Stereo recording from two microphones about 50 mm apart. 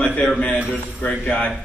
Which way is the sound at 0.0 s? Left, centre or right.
Left.